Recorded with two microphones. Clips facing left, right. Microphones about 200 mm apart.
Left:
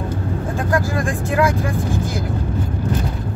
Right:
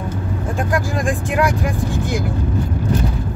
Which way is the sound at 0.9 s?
15° right (ahead or behind).